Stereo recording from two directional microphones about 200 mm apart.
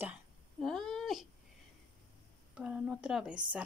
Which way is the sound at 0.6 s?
Centre (ahead or behind).